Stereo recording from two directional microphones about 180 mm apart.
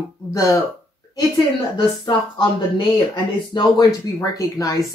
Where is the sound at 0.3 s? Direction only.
15° left (ahead or behind).